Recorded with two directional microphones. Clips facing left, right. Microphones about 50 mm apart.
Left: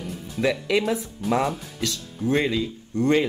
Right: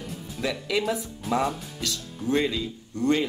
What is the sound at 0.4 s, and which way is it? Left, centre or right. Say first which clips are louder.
Speech: left 5 dB; left.